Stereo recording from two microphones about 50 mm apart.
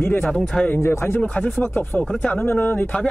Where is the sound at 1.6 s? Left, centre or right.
Left.